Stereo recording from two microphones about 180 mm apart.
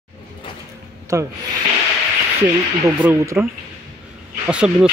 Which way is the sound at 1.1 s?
15° right (ahead or behind).